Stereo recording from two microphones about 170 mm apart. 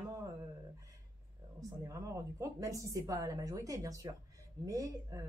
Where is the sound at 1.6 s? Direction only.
20° right (ahead or behind).